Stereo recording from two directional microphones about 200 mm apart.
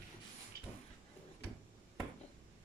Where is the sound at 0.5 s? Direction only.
50° right (ahead or behind).